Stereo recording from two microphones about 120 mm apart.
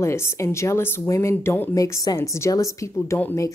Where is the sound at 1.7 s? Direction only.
30° left (ahead or behind).